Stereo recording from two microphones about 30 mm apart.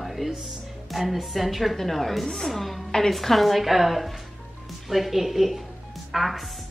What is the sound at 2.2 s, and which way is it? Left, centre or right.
Speech, centre.